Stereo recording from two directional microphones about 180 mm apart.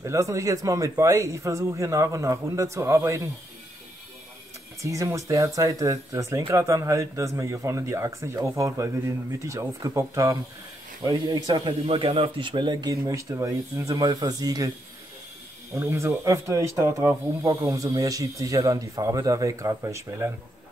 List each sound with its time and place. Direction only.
0.0 s speech: 15° right (ahead or behind)
4.9 s speech: 15° right (ahead or behind)
15.7 s speech: 15° right (ahead or behind)